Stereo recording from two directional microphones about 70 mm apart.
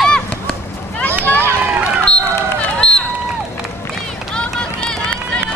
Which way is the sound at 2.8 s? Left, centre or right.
Centre.